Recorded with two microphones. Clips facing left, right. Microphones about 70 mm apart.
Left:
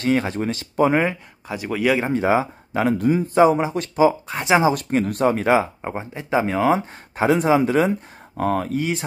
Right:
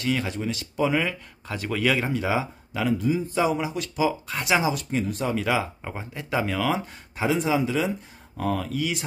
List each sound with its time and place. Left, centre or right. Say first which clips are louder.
0.0 s a man's voice: left 6 dB; left
1.5 s speech: left 4 dB; centre
2.0 s a man's voice: left 6 dB; left
4.6 s a man's voice: left 6 dB; left
7.2 s a man's voice: left 6 dB; left